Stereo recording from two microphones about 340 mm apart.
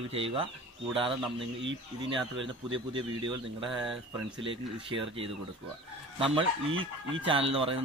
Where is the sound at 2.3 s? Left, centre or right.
Right.